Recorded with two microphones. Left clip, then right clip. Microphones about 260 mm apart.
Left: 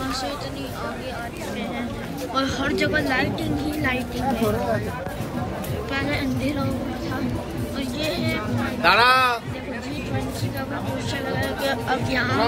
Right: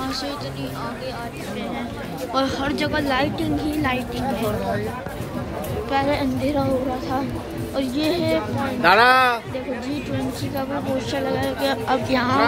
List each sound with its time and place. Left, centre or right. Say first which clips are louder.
2.3 s speech: right 1 dB; centre
5.9 s speech: right 5 dB; centre
7.7 s speech: right 5 dB; centre
8.8 s speech: right 2 dB; right
11.3 s speech: left 1 dB; centre